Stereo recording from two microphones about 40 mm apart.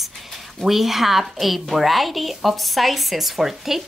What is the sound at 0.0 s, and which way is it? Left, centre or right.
A woman's voice, centre.